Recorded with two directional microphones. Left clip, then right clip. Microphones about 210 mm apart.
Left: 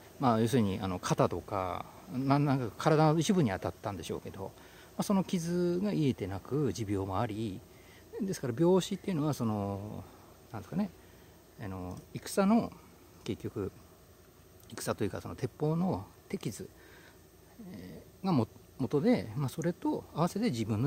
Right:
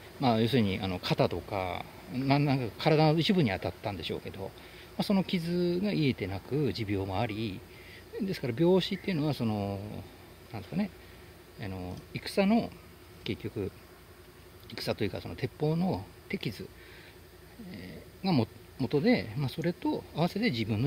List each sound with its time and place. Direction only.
0.2 s speech: 15° left (ahead or behind)
14.7 s speech: 20° left (ahead or behind)
17.8 s speech: 15° left (ahead or behind)